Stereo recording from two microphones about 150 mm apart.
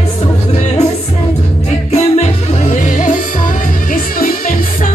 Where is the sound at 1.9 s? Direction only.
50° left (ahead or behind).